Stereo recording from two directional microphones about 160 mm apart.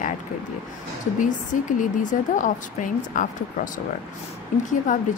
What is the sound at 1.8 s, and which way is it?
A woman's voice, 55° left (ahead or behind).